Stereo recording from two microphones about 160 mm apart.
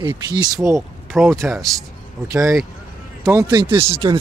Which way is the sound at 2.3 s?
20° right (ahead or behind).